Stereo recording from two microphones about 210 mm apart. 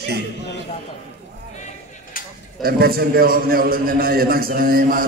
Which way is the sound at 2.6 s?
45° right (ahead or behind).